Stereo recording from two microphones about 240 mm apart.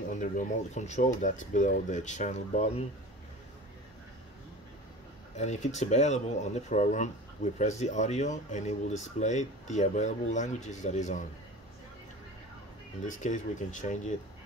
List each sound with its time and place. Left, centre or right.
0.1 s speech: left
5.3 s speech: left
13.0 s speech: left